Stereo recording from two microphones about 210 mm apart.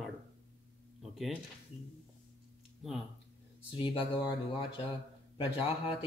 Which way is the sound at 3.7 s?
25° left (ahead or behind).